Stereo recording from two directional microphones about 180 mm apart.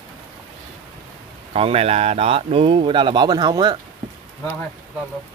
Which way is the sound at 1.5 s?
35° right (ahead or behind).